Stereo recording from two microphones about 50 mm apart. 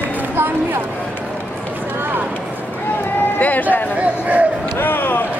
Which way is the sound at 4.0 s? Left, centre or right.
Right.